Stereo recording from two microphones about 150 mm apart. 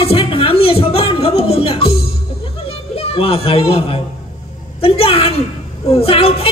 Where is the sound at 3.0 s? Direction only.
40° left (ahead or behind).